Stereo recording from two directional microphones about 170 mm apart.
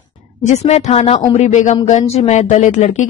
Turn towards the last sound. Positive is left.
turn(degrees=45)  # may be behind; listen again after turning